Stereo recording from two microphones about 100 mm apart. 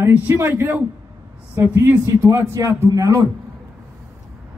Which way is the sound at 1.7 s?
30° right (ahead or behind).